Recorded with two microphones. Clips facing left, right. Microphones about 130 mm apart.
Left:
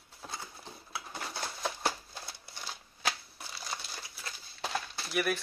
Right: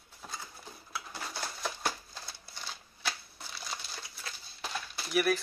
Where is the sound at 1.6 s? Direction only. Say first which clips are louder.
Left 2 dB; 15° left (ahead or behind).